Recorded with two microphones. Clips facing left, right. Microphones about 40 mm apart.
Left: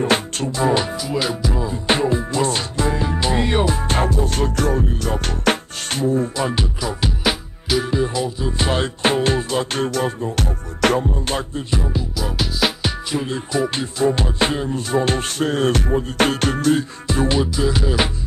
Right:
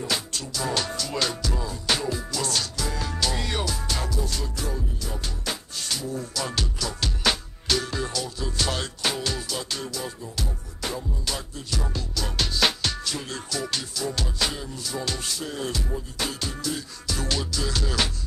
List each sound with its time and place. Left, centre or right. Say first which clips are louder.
0.0 s music: left 10 dB; left
11.2 s music: left 9 dB; left
11.8 s music: left 7 dB; centre
13.1 s music: left 10 dB; left
17.1 s music: left 10 dB; left